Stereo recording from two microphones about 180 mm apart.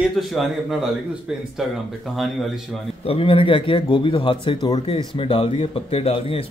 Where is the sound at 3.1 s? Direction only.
30° left (ahead or behind).